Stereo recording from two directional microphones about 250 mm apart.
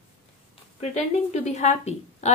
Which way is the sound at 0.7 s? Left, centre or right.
Left.